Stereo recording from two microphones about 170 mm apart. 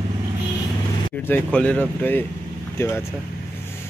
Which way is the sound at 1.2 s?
10° left (ahead or behind).